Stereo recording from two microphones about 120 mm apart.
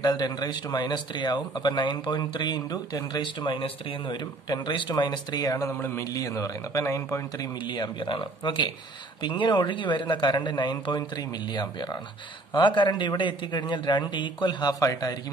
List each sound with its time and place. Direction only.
0.0 s a man's voice: 35° left (ahead or behind)
7.6 s speech: 40° left (ahead or behind)